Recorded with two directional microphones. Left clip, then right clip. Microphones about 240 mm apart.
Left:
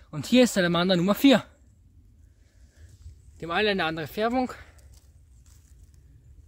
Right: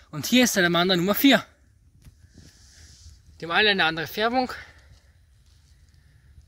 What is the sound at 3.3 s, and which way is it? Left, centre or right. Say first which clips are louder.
A woman's voice: right 5 dB; centre.